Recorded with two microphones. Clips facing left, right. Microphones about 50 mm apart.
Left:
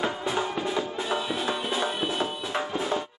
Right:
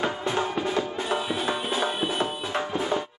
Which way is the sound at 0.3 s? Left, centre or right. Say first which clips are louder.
Right 3 dB; centre.